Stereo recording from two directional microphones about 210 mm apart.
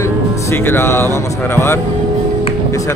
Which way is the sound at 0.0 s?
10° left (ahead or behind).